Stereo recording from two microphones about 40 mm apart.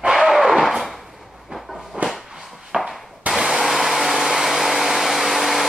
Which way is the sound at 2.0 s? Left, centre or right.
Right.